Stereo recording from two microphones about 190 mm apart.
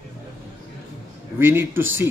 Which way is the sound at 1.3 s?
10° right (ahead or behind).